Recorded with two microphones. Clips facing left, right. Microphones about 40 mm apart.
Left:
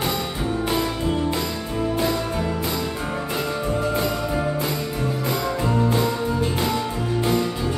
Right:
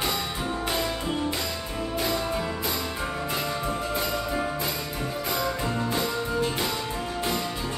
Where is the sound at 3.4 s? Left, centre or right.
Left.